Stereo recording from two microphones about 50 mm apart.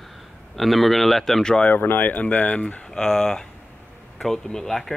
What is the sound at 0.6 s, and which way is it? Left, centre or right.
Speech, centre.